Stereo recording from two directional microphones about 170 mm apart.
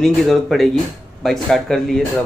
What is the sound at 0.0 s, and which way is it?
Speech, centre (ahead or behind).